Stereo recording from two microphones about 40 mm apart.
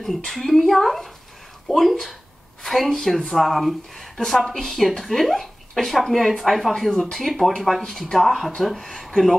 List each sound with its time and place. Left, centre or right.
0.3 s a woman's voice: centre